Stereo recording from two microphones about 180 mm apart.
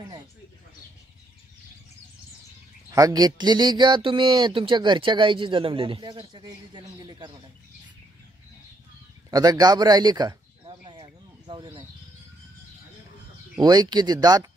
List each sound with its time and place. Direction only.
2.9 s speech: 20° right (ahead or behind)
9.3 s speech: 20° right (ahead or behind)
10.9 s a sound: 25° right (ahead or behind)
13.6 s speech: 25° right (ahead or behind)